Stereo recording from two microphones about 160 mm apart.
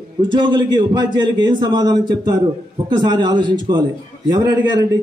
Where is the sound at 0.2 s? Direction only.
30° right (ahead or behind).